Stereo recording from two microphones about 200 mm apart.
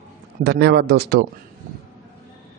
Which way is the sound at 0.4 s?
55° right (ahead or behind).